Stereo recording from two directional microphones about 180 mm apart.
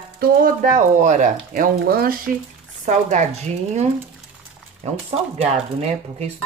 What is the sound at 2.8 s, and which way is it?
Speech, 40° right (ahead or behind).